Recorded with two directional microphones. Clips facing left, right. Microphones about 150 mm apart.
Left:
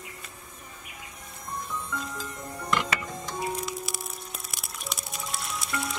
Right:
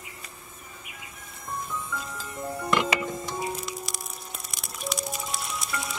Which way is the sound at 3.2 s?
Centre (ahead or behind).